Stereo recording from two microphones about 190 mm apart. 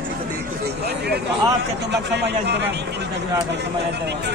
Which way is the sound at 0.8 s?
60° right (ahead or behind).